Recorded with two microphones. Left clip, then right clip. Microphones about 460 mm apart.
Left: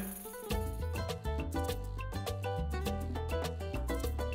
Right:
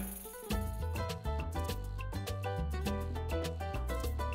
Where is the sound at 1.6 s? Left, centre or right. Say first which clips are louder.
Left 3 dB; left.